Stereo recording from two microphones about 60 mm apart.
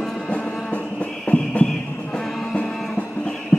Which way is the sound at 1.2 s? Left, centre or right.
Left.